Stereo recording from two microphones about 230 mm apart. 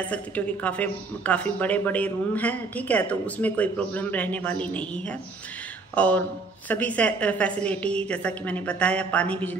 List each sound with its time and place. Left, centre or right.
0.1 s a woman's voice: centre